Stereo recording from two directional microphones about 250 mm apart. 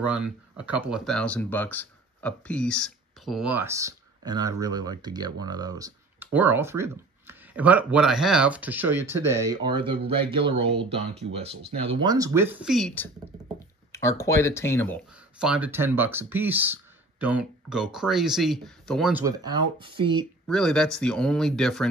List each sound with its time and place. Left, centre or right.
0.0 s speech: centre
15.3 s speech: centre
19.2 s speech: centre
20.4 s speech: centre